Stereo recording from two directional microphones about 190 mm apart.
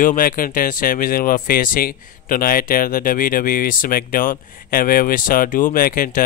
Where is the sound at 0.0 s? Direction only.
45° left (ahead or behind).